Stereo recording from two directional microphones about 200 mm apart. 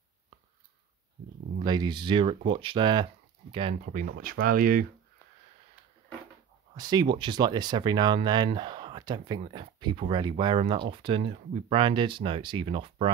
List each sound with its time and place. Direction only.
1.6 s speech: 20° right (ahead or behind)
3.8 s speech: 45° right (ahead or behind)
6.7 s speech: 20° right (ahead or behind)